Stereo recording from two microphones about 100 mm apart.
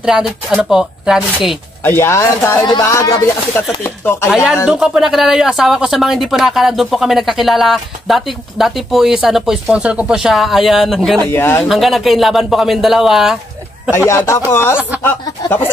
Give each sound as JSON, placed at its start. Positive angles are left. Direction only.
{"t": 0.0, "sound": "speech", "side_deg": -5}
{"t": 1.8, "sound": "speech", "side_deg": 25}
{"t": 4.6, "sound": "speech", "side_deg": -5}
{"t": 11.2, "sound": "speech", "side_deg": 25}
{"t": 11.6, "sound": "speech", "side_deg": 0}
{"t": 13.9, "sound": "speech", "side_deg": 25}